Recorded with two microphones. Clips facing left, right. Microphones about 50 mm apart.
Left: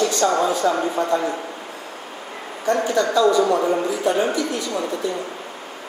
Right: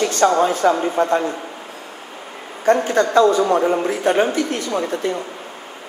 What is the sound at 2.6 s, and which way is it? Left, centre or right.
A man's voice, right.